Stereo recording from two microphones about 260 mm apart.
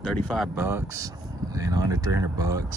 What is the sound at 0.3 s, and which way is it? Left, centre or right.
Speech, centre.